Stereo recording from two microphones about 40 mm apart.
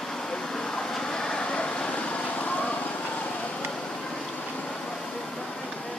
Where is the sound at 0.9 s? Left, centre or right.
Centre.